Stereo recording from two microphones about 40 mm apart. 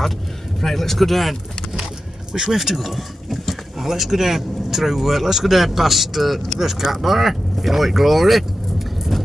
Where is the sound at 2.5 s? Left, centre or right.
Centre.